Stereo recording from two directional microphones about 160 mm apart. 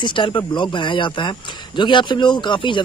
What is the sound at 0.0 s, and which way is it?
Speech, 30° left (ahead or behind).